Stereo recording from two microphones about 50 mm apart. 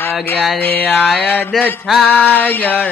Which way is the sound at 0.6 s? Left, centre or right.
Left.